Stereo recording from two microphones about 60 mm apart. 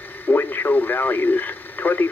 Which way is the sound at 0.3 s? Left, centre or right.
Left.